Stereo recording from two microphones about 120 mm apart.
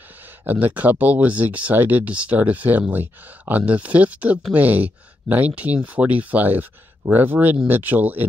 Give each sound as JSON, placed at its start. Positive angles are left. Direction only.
{"t": 0.5, "sound": "speech", "side_deg": -15}